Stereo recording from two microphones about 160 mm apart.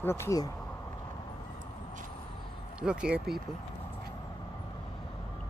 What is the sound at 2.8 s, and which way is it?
Speech, 5° right (ahead or behind).